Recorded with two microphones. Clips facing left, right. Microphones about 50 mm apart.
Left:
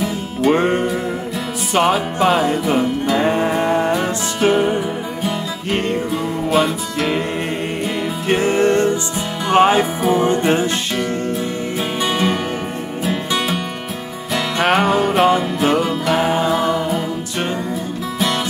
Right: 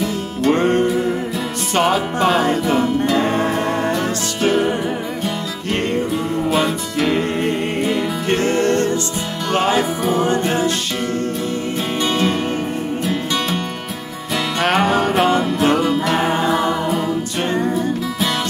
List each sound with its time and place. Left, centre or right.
0.0 s music: centre; by 10.7 s left
12.0 s music: centre